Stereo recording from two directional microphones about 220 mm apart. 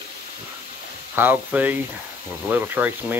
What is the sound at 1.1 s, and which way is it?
Speech, 10° right (ahead or behind).